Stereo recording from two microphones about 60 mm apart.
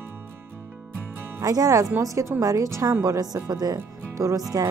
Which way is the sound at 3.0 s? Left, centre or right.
Right.